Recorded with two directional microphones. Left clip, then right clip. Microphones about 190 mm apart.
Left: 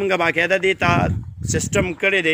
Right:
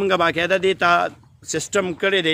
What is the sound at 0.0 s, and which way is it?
A man's voice, 25° right (ahead or behind).